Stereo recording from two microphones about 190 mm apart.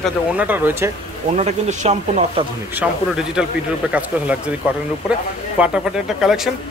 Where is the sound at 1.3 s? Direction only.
35° right (ahead or behind).